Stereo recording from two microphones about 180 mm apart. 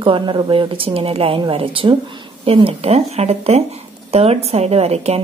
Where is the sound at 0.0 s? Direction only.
30° right (ahead or behind).